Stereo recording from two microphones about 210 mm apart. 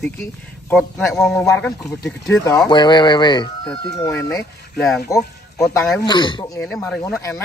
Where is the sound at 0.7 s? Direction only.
Centre (ahead or behind).